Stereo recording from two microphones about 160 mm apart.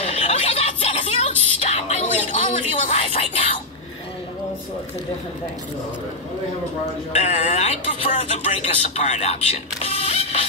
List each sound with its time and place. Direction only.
0.0 s music: 40° left (ahead or behind)
7.1 s speech: 45° left (ahead or behind)